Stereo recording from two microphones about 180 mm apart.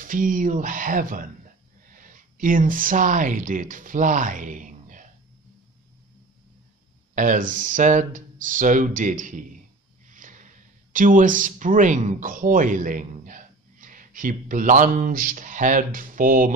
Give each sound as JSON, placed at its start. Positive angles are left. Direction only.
{"t": 0.0, "sound": "speech", "side_deg": -50}
{"t": 7.2, "sound": "speech", "side_deg": -45}